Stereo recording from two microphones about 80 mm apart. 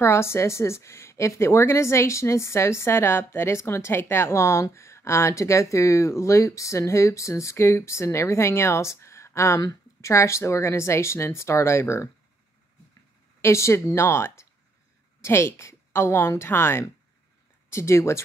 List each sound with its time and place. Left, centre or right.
0.0 s speech: left
13.4 s speech: left